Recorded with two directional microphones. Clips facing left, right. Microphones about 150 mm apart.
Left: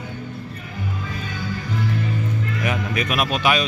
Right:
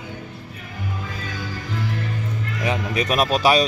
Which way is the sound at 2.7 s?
35° right (ahead or behind).